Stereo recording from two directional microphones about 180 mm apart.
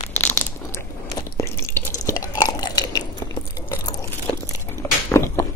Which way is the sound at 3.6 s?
25° left (ahead or behind).